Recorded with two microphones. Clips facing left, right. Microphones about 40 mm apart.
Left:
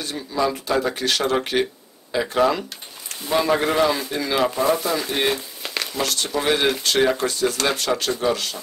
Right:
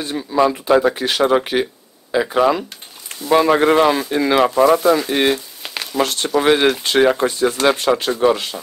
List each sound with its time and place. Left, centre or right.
0.0 s speech: right
3.3 s speech: right
4.6 s speech: right
5.0 s a sound: centre
5.9 s speech: right